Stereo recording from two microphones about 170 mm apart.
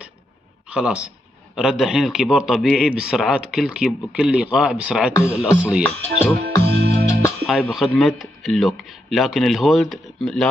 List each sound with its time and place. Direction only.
0.7 s a man's voice: 5° right (ahead or behind)
5.9 s music: 10° left (ahead or behind)
6.6 s music: 75° right (ahead or behind)
7.1 s music: 15° left (ahead or behind)
7.4 s a man's voice: centre (ahead or behind)